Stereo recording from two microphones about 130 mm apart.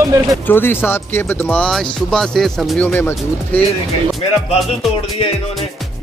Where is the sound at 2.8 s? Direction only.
20° left (ahead or behind).